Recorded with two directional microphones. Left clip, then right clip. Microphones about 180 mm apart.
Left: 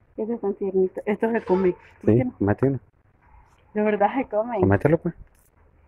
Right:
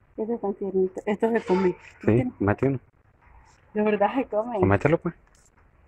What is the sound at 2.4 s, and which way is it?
Speech, 30° left (ahead or behind).